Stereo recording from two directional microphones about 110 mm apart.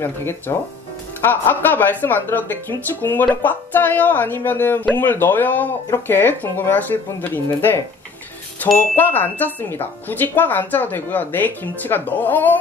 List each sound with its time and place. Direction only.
0.0 s a woman's voice: 20° left (ahead or behind)
8.9 s a woman's voice: 15° left (ahead or behind)